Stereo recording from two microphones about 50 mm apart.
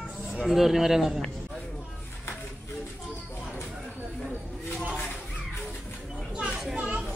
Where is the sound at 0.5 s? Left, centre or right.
Centre.